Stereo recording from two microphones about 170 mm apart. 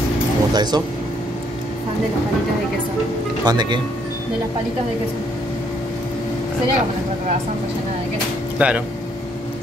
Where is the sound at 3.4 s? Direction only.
25° right (ahead or behind).